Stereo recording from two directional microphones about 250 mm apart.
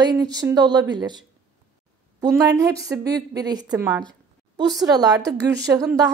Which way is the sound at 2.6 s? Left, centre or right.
Centre.